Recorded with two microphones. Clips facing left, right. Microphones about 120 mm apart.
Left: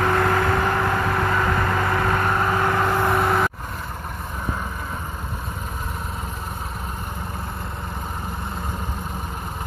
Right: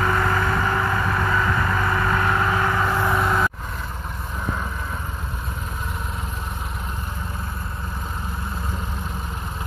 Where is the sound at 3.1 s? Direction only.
50° left (ahead or behind).